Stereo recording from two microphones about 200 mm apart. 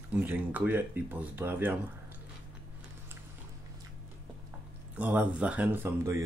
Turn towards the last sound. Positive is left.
turn(degrees=-10)  # may be behind; listen again after turning